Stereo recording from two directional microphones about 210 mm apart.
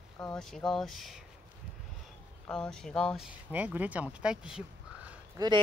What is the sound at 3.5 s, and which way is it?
Speech, 10° right (ahead or behind).